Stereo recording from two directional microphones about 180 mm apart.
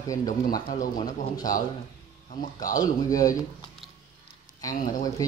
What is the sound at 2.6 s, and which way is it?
Speech, 20° left (ahead or behind).